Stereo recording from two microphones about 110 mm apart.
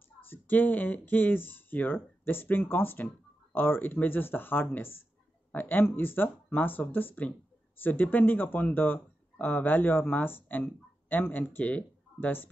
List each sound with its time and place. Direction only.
0.2 s speech: 15° left (ahead or behind)